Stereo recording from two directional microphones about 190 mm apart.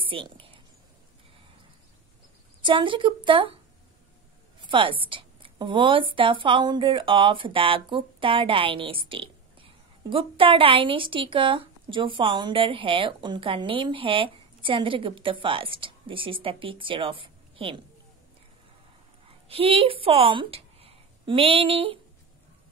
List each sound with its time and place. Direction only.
0.0 s a sound: 25° right (ahead or behind)
2.6 s speech: 25° right (ahead or behind)
4.6 s speech: 25° right (ahead or behind)
19.5 s a woman's voice: 30° right (ahead or behind)